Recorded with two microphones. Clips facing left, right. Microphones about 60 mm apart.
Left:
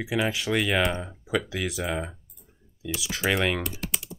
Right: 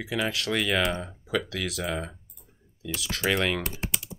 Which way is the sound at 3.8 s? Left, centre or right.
Right.